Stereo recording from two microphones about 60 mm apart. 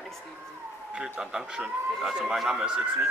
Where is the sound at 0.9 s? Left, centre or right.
Centre.